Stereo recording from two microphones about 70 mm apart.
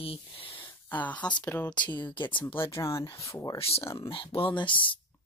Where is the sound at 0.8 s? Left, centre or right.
Left.